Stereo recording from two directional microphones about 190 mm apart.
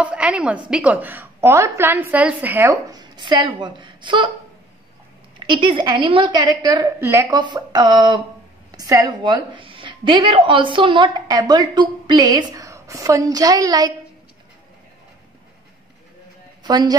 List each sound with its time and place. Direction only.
0.0 s a sound: 5° right (ahead or behind)
0.7 s a woman's voice: 5° right (ahead or behind); by 4.3 s 25° right (ahead or behind)
5.4 s a woman's voice: 25° right (ahead or behind)
16.6 s speech: 20° right (ahead or behind)